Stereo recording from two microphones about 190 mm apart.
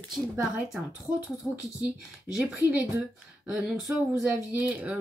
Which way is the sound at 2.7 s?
10° right (ahead or behind).